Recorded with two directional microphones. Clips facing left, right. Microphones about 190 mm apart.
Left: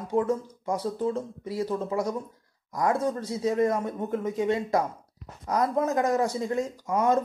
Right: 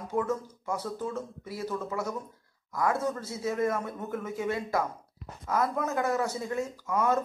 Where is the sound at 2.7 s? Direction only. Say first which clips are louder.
Left 3 dB; 20° left (ahead or behind).